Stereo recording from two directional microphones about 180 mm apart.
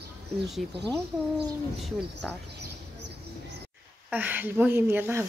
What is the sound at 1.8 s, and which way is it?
Speech, centre (ahead or behind).